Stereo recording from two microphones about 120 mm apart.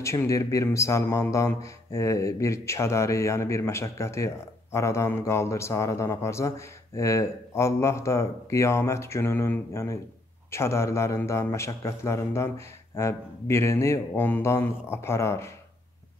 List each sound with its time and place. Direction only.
0.0 s a man's voice: 25° left (ahead or behind)